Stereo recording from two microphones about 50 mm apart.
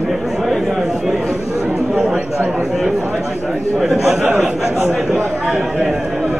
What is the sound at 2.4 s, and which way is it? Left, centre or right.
A man's voice, centre.